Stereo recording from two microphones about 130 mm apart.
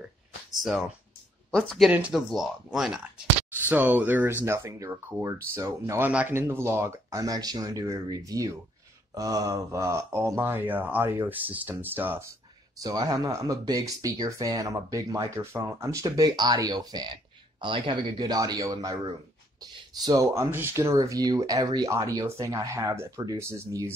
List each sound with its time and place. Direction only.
0.6 s speech: centre (ahead or behind)
1.9 s speech: 10° right (ahead or behind)
3.5 s speech: 15° right (ahead or behind)
12.8 s speech: 30° right (ahead or behind)